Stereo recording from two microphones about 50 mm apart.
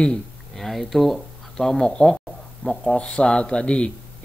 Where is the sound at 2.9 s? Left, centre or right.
Centre.